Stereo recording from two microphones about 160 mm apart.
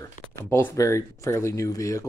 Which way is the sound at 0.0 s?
15° left (ahead or behind).